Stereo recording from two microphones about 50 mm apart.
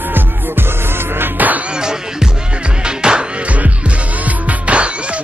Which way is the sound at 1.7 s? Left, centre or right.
Centre.